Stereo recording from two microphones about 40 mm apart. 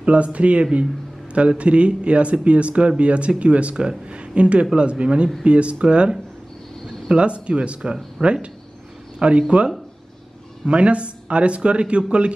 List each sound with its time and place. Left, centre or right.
0.0 s a man's voice: right
10.6 s a man's voice: right